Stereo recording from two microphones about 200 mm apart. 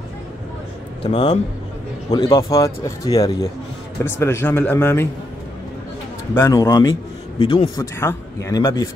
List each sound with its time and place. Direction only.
1.0 s a man's voice: 25° left (ahead or behind)
6.3 s a man's voice: 15° left (ahead or behind)
7.8 s speech: 15° left (ahead or behind)